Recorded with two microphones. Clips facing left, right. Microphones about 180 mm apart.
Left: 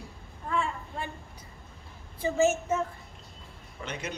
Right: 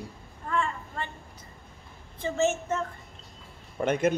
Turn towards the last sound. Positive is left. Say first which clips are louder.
# right 13 dB
turn(degrees=-50)  # may be behind; listen again after turning